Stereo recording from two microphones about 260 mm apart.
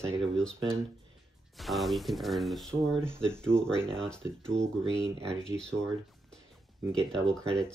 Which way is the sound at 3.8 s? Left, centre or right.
Centre.